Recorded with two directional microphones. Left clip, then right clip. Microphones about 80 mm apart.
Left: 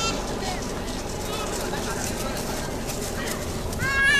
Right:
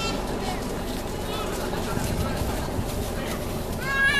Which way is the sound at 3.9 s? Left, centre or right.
Left.